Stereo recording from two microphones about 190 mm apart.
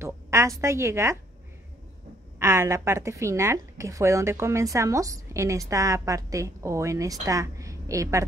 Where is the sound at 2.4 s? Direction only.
15° right (ahead or behind).